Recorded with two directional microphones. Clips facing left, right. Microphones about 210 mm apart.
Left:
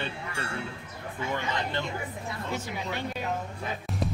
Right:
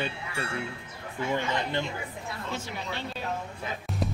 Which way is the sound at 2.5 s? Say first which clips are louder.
Left 2 dB; 15° left (ahead or behind).